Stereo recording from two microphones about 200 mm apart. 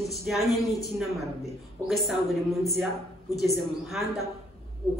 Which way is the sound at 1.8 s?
Centre (ahead or behind).